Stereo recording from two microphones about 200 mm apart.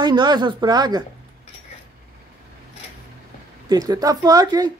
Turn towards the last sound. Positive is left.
turn(degrees=-20)  # may be behind; listen again after turning